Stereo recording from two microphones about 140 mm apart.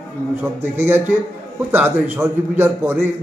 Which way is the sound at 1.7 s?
15° right (ahead or behind).